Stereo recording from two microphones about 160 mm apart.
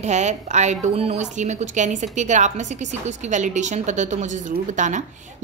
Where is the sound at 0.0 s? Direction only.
45° right (ahead or behind).